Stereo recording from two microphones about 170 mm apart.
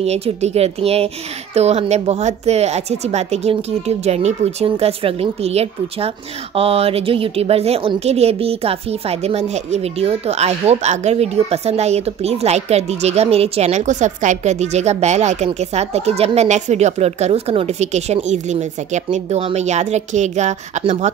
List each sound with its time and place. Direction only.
0.0 s a child's voice: 40° right (ahead or behind)